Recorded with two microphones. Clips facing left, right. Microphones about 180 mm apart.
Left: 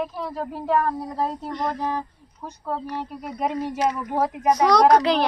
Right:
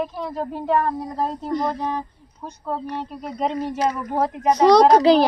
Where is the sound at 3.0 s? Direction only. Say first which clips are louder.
Right 2 dB; 10° left (ahead or behind).